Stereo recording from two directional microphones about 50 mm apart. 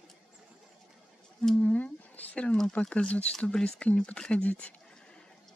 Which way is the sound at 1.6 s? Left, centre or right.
Left.